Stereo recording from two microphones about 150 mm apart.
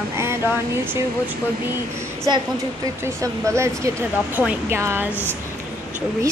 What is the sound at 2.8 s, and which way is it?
Speech, 20° right (ahead or behind).